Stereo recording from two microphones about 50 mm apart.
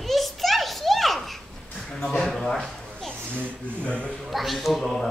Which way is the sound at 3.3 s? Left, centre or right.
Right.